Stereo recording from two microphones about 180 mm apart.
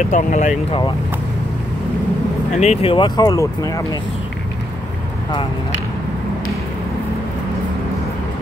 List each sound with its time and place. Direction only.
0.1 s speech: 40° left (ahead or behind)
2.6 s speech: 35° left (ahead or behind)